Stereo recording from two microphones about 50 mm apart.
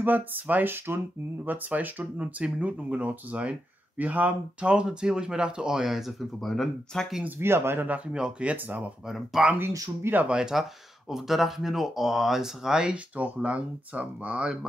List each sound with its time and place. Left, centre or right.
0.0 s speech: right
2.1 s speech: right
4.6 s speech: centre
6.4 s speech: centre
7.2 s speech: right
8.1 s speech: right
8.6 s speech: right
9.1 s speech: centre
10.2 s speech: centre
11.1 s speech: centre; by 14.5 s right